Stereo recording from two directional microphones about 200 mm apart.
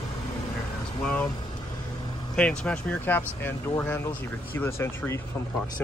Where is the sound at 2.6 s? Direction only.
5° left (ahead or behind).